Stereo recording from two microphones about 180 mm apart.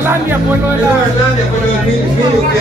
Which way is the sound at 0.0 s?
10° right (ahead or behind).